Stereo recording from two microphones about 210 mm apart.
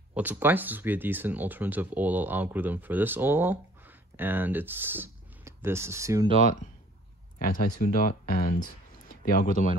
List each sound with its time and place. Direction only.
0.1 s speech: 10° right (ahead or behind)
7.3 s speech: 40° left (ahead or behind)